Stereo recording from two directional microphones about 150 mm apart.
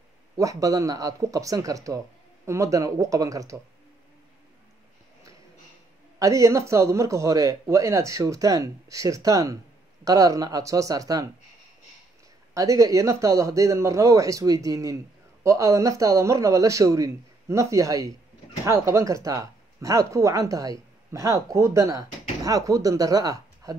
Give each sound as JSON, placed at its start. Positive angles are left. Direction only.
{"t": 0.4, "sound": "speech", "side_deg": -20}
{"t": 6.1, "sound": "speech", "side_deg": -20}
{"t": 12.5, "sound": "speech", "side_deg": -20}